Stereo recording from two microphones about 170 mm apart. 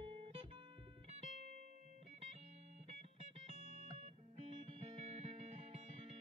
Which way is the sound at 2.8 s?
40° right (ahead or behind).